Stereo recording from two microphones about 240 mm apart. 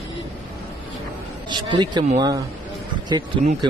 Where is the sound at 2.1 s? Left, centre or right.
Centre.